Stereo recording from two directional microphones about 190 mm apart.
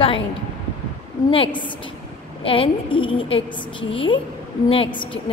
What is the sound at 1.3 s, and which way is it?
A woman's voice, 25° left (ahead or behind).